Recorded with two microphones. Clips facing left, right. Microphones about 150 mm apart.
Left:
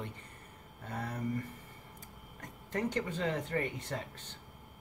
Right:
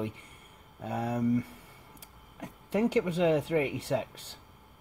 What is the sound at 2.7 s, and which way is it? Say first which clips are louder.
Speech: right 8 dB; 75° right (ahead or behind).